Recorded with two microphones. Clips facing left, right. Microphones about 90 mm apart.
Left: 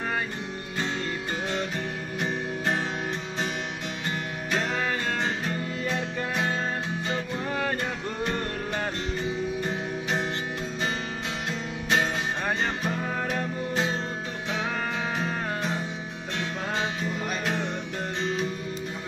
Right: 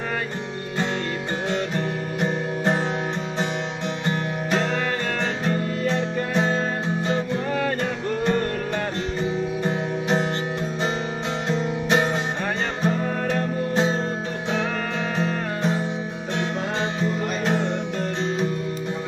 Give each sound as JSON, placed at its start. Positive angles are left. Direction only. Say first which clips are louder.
{"t": 2.1, "sound": "music", "louder": "right 4 dB", "side_deg": -30}
{"t": 4.0, "sound": "music", "louder": "right 6 dB", "side_deg": -30}
{"t": 9.6, "sound": "music", "louder": "right 5 dB", "side_deg": -30}
{"t": 11.4, "sound": "music", "louder": "right 7 dB", "side_deg": -30}
{"t": 17.0, "sound": "music", "louder": "right 5 dB", "side_deg": -30}